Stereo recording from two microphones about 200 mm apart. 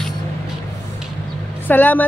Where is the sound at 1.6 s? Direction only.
10° left (ahead or behind).